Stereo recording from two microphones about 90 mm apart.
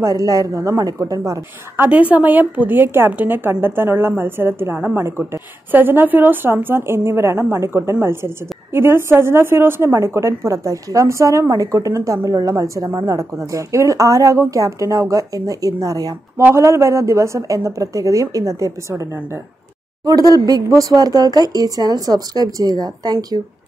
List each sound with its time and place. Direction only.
0.0 s a woman's voice: 35° right (ahead or behind)
1.8 s a woman's voice: 15° right (ahead or behind); by 16.4 s 40° right (ahead or behind)
16.4 s a woman's voice: 30° right (ahead or behind)
20.1 s speech: 45° right (ahead or behind)